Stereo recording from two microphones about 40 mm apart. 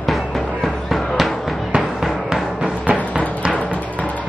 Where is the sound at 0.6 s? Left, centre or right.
Centre.